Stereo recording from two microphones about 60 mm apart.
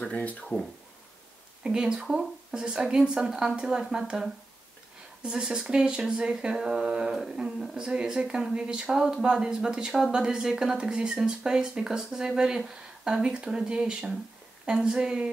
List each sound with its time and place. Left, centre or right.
0.0 s speech: left
1.6 s speech: centre